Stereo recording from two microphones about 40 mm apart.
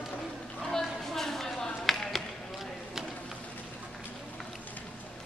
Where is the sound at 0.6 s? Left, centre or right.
Centre.